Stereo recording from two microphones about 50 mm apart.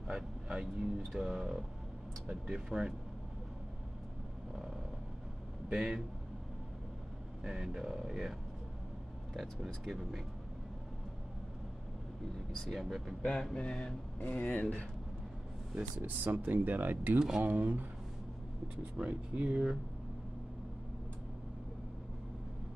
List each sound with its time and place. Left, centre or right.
0.1 s speech: centre
5.7 s speech: centre
7.4 s speech: centre
9.8 s speech: centre
12.5 s mantra: centre
12.8 s speech: centre
13.2 s mantra: centre
13.6 s speech: left
16.0 s speech: right